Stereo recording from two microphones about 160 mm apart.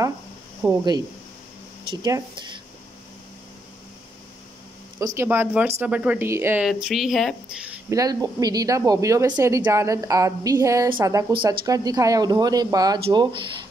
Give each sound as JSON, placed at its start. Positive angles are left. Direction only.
{"t": 0.6, "sound": "speech", "side_deg": -25}
{"t": 1.9, "sound": "speech", "side_deg": -25}
{"t": 5.0, "sound": "speech", "side_deg": -15}
{"t": 6.6, "sound": "speech", "side_deg": 0}
{"t": 7.9, "sound": "speech", "side_deg": -20}